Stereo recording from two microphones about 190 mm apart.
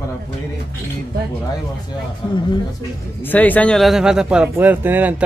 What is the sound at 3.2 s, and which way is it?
Speech, 10° left (ahead or behind).